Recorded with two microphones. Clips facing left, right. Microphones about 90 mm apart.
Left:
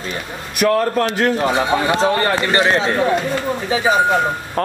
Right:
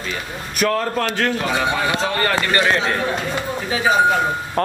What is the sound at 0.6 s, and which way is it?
Speech, 5° left (ahead or behind).